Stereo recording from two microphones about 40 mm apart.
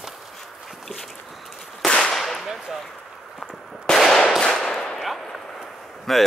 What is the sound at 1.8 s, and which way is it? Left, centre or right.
Whip, centre.